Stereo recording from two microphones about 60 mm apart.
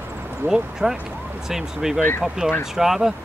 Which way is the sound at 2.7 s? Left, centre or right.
Centre.